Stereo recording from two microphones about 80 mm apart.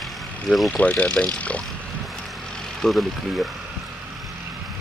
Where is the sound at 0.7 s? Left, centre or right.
Centre.